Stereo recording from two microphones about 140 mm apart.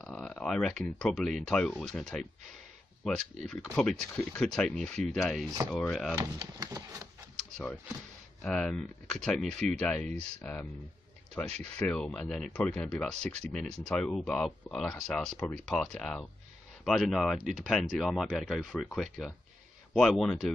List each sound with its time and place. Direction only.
0.0 s speech: 5° left (ahead or behind)
5.5 s typewriter: 25° right (ahead or behind)
5.8 s speech: centre (ahead or behind)
6.6 s typewriter: 25° right (ahead or behind)
7.5 s speech: 10° left (ahead or behind)